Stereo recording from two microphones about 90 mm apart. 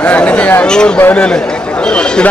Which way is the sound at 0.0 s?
15° left (ahead or behind).